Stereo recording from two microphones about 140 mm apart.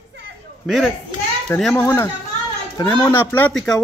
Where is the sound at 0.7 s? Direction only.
Centre (ahead or behind).